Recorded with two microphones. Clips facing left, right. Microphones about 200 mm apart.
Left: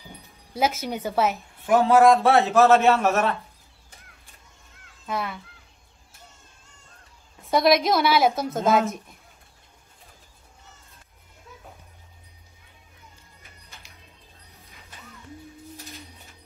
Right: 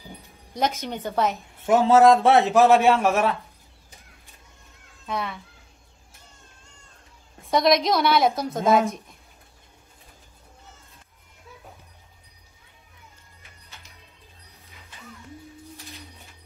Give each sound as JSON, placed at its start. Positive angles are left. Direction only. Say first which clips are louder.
{"t": 0.8, "sound": "a woman's voice", "louder": "left 1 dB", "side_deg": 5}
{"t": 1.7, "sound": "a man's voice", "louder": "right 1 dB", "side_deg": -25}
{"t": 5.0, "sound": "speech", "louder": "even", "side_deg": 0}
{"t": 7.5, "sound": "a woman's voice", "louder": "even", "side_deg": 5}